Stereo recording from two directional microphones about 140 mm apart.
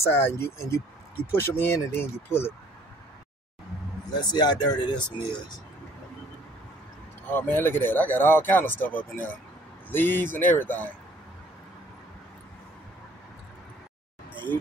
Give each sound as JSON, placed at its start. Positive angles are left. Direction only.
{"t": 0.0, "sound": "speech", "side_deg": 15}
{"t": 4.1, "sound": "speech", "side_deg": 30}
{"t": 7.2, "sound": "speech", "side_deg": 15}